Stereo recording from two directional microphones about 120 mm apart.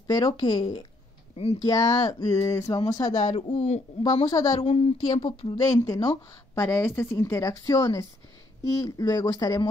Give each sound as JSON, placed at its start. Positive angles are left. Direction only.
{"t": 0.0, "sound": "speech", "side_deg": 35}
{"t": 1.3, "sound": "speech", "side_deg": 60}
{"t": 1.6, "sound": "a woman's voice", "side_deg": 30}
{"t": 3.4, "sound": "a man's voice", "side_deg": 70}
{"t": 4.0, "sound": "speech", "side_deg": 30}
{"t": 4.6, "sound": "speech", "side_deg": 55}
{"t": 5.6, "sound": "a woman's voice", "side_deg": 25}